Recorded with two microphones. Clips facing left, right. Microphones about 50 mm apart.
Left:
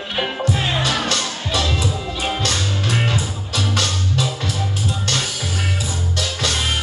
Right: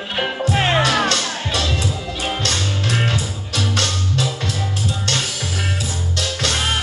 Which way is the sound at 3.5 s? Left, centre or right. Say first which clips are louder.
Even; right.